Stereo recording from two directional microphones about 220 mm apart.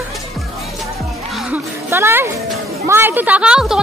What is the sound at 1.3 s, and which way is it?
Music, 10° right (ahead or behind).